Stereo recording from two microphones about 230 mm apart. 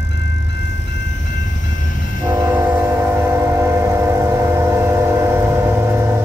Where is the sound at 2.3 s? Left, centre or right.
Centre.